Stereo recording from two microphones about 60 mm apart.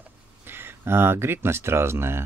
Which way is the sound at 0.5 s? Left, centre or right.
Right.